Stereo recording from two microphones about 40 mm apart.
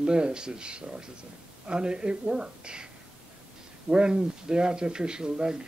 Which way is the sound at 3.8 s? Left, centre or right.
Right.